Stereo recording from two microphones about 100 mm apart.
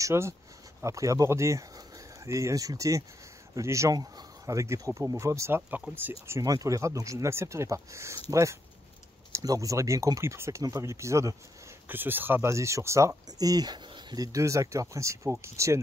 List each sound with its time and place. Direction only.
0.0 s speech: 30° right (ahead or behind)
5.7 s speech: 15° right (ahead or behind)
6.2 s speech: 30° right (ahead or behind)
11.9 s speech: 20° right (ahead or behind)